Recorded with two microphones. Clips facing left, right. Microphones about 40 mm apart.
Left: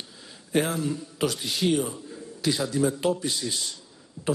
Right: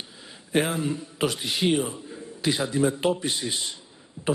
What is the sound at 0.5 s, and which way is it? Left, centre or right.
A man's voice, right.